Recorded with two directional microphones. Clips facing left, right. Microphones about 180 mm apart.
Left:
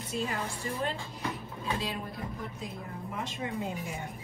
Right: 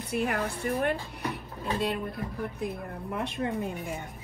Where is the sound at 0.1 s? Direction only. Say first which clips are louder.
Right 5 dB; 65° right (ahead or behind).